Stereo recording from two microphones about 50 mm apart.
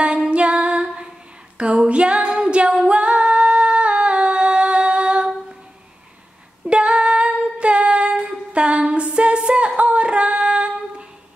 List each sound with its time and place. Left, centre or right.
0.3 s female singing: right
2.3 s a capella: centre
2.9 s female singing: right
6.6 s female singing: right
8.5 s a sound: right
8.8 s a capella: right
9.8 s female singing: right